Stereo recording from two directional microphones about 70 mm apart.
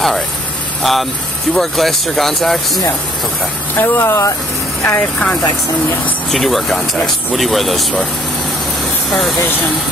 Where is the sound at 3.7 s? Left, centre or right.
Left.